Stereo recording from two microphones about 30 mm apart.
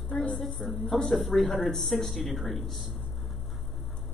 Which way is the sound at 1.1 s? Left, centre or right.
Centre.